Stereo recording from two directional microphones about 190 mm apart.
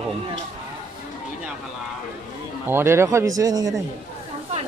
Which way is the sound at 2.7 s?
10° right (ahead or behind).